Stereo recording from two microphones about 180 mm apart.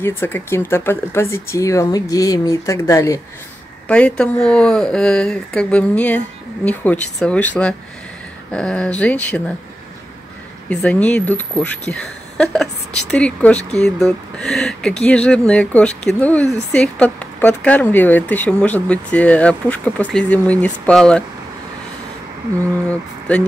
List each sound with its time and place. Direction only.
0.0 s speech: 10° left (ahead or behind)
3.8 s speech: 5° left (ahead or behind)
10.7 s a woman's voice: 5° left (ahead or behind)
22.8 s speech: 5° left (ahead or behind)